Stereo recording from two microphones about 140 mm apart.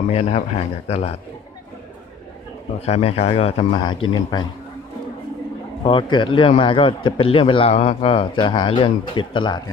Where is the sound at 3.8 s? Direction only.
30° left (ahead or behind).